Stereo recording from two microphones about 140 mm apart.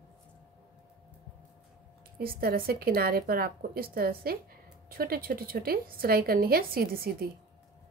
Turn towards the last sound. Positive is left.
turn(degrees=-90)